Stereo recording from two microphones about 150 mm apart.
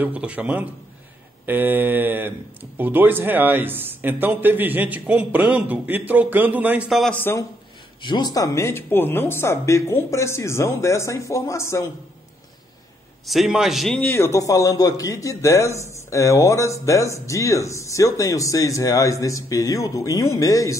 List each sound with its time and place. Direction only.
0.0 s speech: 10° right (ahead or behind)
7.2 s speech: 15° left (ahead or behind)
8.0 s a man's voice: 30° left (ahead or behind)
13.2 s a man's voice: centre (ahead or behind)
13.9 s a man's voice: 15° left (ahead or behind)